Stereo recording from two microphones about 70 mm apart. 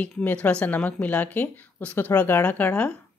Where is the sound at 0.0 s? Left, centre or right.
Left.